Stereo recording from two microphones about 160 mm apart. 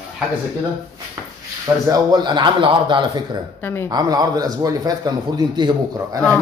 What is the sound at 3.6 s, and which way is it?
Speech, 15° left (ahead or behind).